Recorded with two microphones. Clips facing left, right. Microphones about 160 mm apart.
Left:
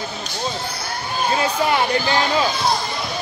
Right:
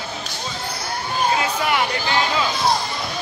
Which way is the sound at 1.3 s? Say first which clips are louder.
Left 6 dB; 30° left (ahead or behind).